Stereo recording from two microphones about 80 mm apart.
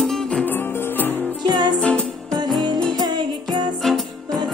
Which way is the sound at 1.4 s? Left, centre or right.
Right.